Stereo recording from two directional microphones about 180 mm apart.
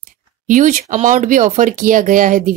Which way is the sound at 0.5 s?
45° right (ahead or behind).